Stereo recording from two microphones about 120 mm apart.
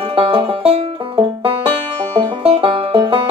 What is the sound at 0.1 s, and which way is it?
Music, 50° right (ahead or behind).